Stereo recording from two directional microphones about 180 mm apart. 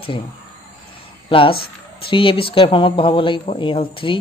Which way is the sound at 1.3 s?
30° left (ahead or behind).